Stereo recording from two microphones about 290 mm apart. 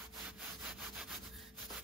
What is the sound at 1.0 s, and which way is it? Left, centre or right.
Rub, centre.